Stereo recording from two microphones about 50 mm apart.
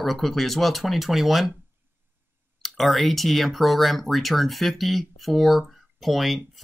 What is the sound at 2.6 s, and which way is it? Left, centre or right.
Speech, centre.